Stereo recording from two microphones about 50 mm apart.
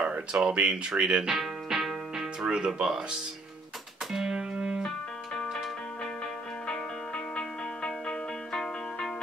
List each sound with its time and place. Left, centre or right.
0.0 s music: centre
2.4 s speech: centre
4.1 s music: centre
4.8 s music: centre
7.3 s music: centre